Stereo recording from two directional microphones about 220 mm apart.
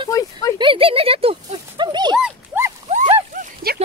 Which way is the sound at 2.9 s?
30° right (ahead or behind).